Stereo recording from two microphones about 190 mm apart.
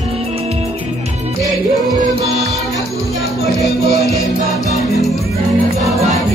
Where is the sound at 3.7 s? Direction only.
55° left (ahead or behind).